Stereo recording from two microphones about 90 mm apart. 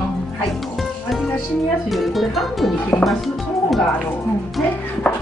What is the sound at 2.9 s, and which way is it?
Speech, 25° left (ahead or behind).